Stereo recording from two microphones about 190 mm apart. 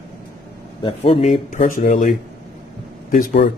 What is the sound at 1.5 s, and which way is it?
Speech, 45° left (ahead or behind).